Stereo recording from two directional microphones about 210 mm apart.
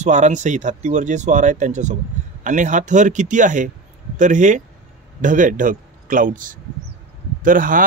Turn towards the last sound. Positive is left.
turn(degrees=-40)  # may be behind; listen again after turning